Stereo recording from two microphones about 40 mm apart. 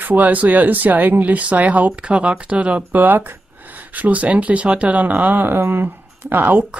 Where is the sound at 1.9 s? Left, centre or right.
Right.